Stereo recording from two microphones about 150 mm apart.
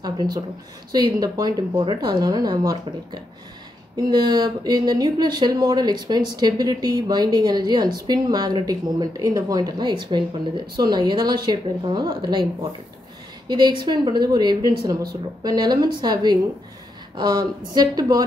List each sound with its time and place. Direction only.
0.9 s speech: 25° right (ahead or behind)
13.5 s speech: 30° right (ahead or behind)